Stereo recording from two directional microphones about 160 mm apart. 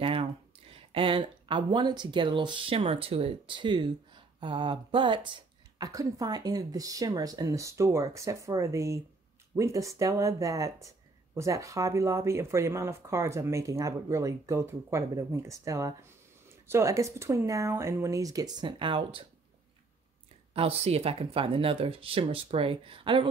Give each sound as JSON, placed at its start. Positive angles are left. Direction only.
{"t": 0.0, "sound": "a sound", "side_deg": -35}
{"t": 0.7, "sound": "speech", "side_deg": -35}
{"t": 20.5, "sound": "speech", "side_deg": -40}